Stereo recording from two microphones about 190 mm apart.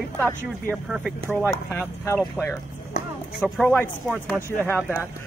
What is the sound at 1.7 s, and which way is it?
Speech, 10° left (ahead or behind).